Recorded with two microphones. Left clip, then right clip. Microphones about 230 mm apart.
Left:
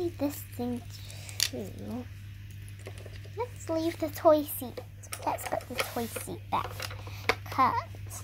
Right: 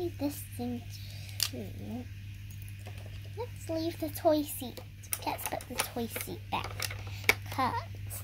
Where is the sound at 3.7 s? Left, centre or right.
Centre.